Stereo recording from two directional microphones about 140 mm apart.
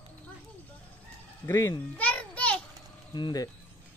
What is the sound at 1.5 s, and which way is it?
Speech, 25° left (ahead or behind).